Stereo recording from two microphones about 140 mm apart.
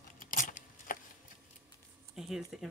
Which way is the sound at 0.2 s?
80° left.